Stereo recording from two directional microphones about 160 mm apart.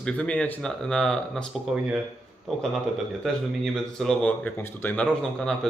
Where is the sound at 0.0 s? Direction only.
5° left (ahead or behind).